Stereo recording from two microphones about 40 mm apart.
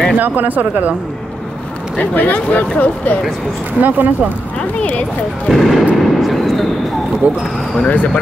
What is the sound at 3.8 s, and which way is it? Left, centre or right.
Speech, right.